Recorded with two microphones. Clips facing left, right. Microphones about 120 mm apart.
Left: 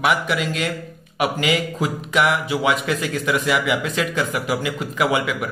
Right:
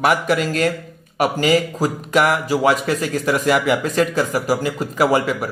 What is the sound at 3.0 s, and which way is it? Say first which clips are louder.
A man's voice: right 3 dB; 40° right (ahead or behind).